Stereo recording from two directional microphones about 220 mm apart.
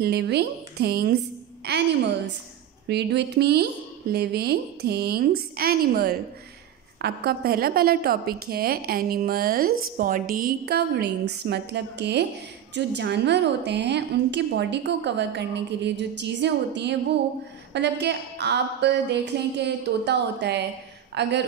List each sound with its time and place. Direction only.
0.0 s a woman's voice: 50° right (ahead or behind)